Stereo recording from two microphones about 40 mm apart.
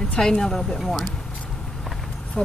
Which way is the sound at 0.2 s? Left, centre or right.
Centre.